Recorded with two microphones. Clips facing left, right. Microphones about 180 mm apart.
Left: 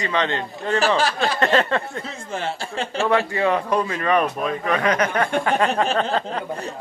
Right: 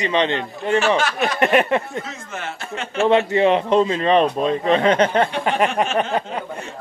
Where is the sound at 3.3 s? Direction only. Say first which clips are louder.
Right 5 dB; 20° right (ahead or behind).